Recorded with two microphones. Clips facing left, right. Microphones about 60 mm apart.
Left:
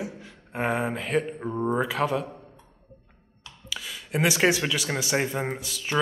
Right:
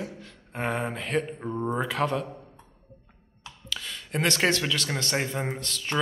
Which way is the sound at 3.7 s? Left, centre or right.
Centre.